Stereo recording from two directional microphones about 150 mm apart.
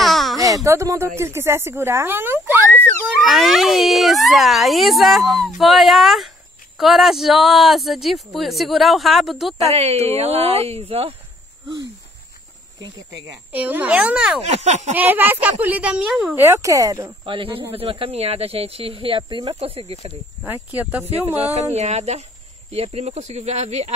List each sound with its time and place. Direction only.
0.0 s a sound: centre (ahead or behind)
0.7 s speech: 20° right (ahead or behind)
3.1 s speech: centre (ahead or behind)
9.6 s speech: 45° right (ahead or behind)
13.5 s speech: 10° right (ahead or behind)
14.4 s speech: 45° right (ahead or behind)
15.0 s speech: 15° right (ahead or behind)
17.2 s speech: 35° right (ahead or behind)
20.4 s speech: 10° right (ahead or behind)
21.4 s speech: 45° right (ahead or behind)